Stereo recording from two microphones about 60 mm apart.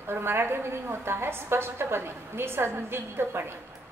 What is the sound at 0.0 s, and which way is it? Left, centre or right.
A woman's voice, right.